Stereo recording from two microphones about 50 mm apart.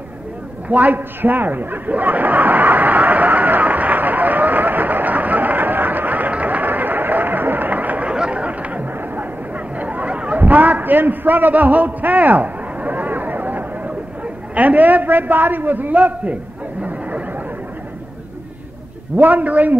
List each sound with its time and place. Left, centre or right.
0.7 s chuckle: right
8.1 s chatter: right
9.8 s a sound: right
14.5 s a man's voice: right
19.1 s a man's voice: right